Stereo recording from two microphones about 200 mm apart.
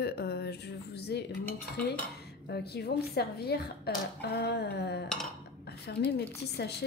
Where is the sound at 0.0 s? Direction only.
55° left (ahead or behind).